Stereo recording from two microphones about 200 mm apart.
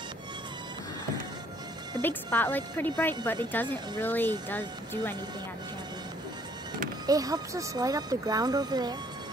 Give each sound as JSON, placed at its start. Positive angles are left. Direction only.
{"t": 2.0, "sound": "speech", "side_deg": 10}
{"t": 7.1, "sound": "speech", "side_deg": -20}